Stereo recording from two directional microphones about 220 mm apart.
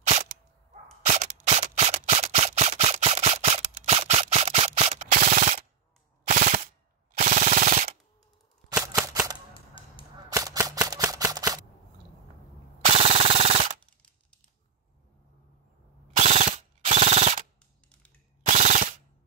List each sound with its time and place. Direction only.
1.0 s a sound: 30° right (ahead or behind)
6.2 s machine gun: 40° right (ahead or behind)
8.6 s a sound: 15° right (ahead or behind)
9.0 s cap gun: 15° right (ahead or behind)
9.5 s cap gun: 25° left (ahead or behind)
10.3 s cap gun: 15° right (ahead or behind)
12.8 s machine gun: 25° right (ahead or behind)
16.2 s mechanisms: 30° right (ahead or behind)
18.4 s machine gun: 35° right (ahead or behind)